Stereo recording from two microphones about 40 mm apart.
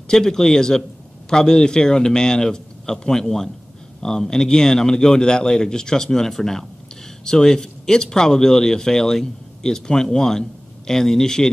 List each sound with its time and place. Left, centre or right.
0.1 s speech: centre